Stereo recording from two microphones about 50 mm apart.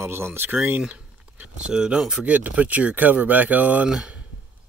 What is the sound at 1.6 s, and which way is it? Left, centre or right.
Speech, centre.